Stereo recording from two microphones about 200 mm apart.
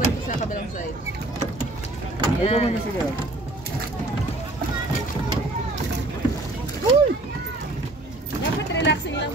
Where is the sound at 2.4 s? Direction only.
30° left (ahead or behind).